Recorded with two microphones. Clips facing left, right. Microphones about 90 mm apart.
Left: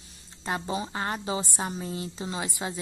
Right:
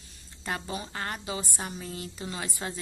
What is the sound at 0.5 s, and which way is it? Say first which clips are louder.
A woman's voice: left 4 dB; 20° left (ahead or behind).